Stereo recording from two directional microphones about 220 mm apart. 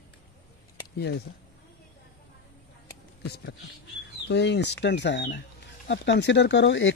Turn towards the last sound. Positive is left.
turn(degrees=55)  # may be behind; listen again after turning